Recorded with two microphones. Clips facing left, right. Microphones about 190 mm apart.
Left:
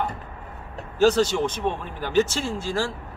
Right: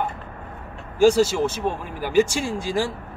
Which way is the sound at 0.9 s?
10° right (ahead or behind).